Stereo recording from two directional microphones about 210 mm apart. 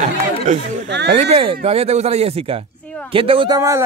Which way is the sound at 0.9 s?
55° right (ahead or behind).